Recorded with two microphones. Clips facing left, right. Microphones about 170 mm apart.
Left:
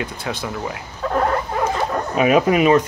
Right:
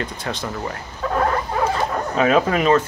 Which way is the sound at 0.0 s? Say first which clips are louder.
Left 1 dB; 5° left (ahead or behind).